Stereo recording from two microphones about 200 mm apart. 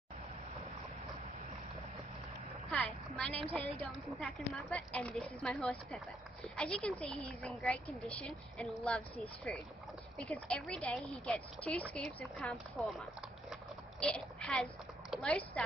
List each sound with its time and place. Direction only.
3.2 s a woman's voice: 5° left (ahead or behind)